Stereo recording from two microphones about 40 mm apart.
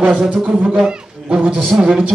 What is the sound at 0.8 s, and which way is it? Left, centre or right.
Speech, right.